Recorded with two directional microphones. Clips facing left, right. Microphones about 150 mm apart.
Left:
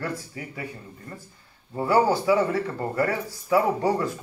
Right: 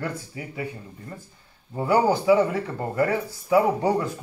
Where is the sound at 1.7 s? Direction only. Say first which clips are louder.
Even; 15° right (ahead or behind).